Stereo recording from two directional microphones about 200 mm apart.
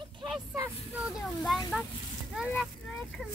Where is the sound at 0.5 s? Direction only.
10° right (ahead or behind).